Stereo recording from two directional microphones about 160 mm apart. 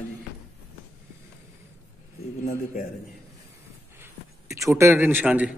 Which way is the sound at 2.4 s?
55° left (ahead or behind).